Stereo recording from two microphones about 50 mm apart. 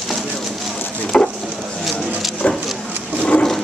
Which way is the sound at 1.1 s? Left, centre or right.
Centre.